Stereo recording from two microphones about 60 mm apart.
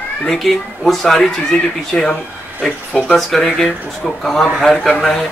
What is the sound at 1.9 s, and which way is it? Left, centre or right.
Speech, centre.